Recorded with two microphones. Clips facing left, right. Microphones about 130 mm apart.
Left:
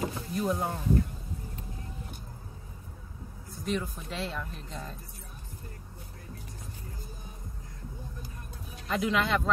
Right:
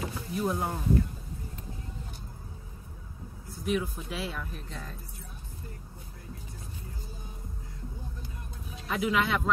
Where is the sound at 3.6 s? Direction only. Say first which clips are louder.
Right 2 dB; 5° right (ahead or behind).